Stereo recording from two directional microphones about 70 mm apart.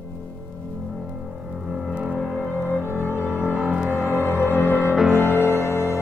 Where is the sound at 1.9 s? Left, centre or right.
Centre.